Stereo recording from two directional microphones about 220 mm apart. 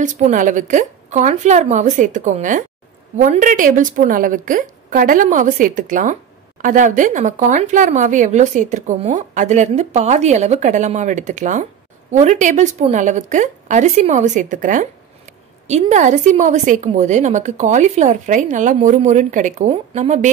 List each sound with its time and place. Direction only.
0.0 s speech: 35° right (ahead or behind)